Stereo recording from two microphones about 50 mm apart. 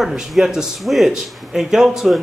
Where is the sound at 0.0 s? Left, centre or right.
Centre.